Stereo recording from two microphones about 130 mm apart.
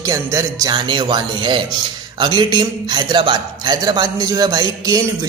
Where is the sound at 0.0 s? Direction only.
25° right (ahead or behind).